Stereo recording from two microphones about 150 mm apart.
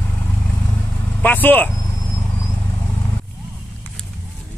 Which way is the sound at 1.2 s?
10° left (ahead or behind).